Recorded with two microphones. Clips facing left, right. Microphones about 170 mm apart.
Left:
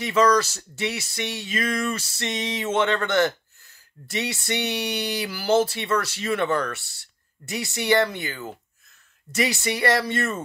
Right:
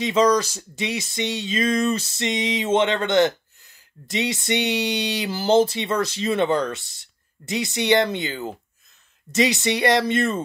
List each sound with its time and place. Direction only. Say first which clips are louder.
0.0 s speech: right 1 dB; 20° right (ahead or behind)